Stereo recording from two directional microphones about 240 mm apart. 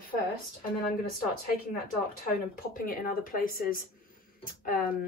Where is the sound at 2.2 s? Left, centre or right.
Left.